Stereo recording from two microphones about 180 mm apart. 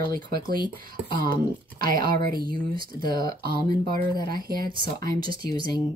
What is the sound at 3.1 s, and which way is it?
Speech, 55° right (ahead or behind).